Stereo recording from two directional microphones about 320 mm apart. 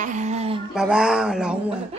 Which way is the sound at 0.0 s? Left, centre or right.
Right.